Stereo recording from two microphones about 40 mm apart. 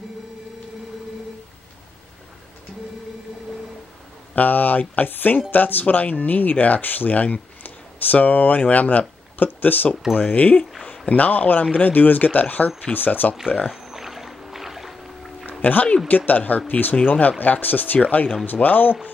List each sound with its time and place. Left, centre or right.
4.4 s speech: left
10.2 s speech: left
13.8 s boat: centre
15.6 s speech: left